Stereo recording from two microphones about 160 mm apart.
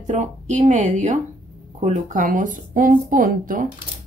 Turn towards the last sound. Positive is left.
turn(degrees=-55)  # may be behind; listen again after turning